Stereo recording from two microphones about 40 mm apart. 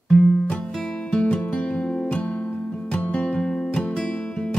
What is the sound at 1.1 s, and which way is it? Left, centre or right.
Music, left.